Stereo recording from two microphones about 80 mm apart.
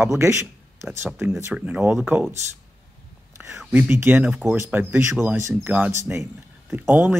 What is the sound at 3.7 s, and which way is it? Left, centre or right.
Speech, right.